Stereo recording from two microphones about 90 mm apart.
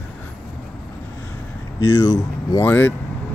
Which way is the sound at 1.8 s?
35° left (ahead or behind).